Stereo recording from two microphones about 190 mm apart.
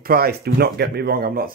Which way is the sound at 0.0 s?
55° right (ahead or behind).